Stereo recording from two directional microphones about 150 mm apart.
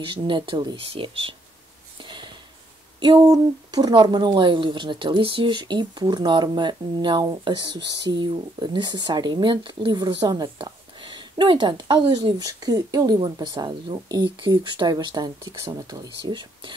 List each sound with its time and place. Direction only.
0.0 s speech: 30° right (ahead or behind)
2.0 s a sound: 30° right (ahead or behind)
3.0 s speech: 30° right (ahead or behind)